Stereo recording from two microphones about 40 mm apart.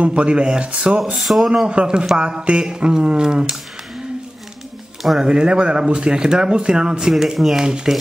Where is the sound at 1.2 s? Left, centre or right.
Centre.